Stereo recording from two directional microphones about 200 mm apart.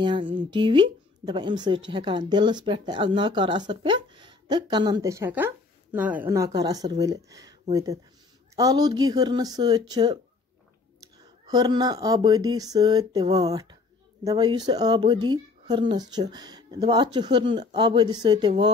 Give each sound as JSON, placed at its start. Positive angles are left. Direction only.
{"t": 0.0, "sound": "speech", "side_deg": -25}
{"t": 11.4, "sound": "speech", "side_deg": -20}